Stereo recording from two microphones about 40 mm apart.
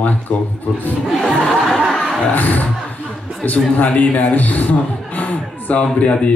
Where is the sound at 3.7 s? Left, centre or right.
Left.